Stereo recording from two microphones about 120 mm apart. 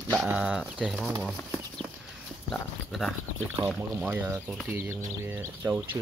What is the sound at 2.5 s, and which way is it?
Speech, 5° left (ahead or behind).